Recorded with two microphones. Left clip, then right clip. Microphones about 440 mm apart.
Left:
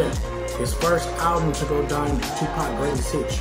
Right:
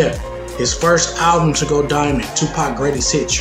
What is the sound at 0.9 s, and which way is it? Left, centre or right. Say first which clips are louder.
Speech: right 7 dB; left.